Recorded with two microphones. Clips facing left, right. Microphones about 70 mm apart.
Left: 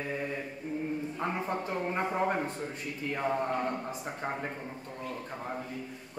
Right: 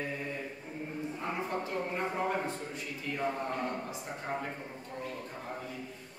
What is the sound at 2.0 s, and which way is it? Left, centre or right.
Speech, left.